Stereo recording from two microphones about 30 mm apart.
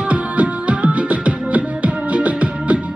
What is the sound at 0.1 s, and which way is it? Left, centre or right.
Music, right.